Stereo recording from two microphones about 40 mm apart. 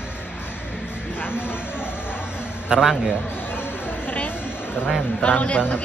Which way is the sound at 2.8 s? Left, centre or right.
Centre.